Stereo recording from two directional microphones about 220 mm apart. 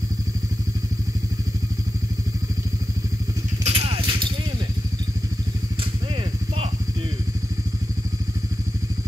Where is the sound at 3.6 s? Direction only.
25° right (ahead or behind).